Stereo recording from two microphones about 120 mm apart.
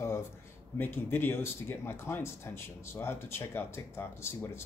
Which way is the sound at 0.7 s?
15° left (ahead or behind).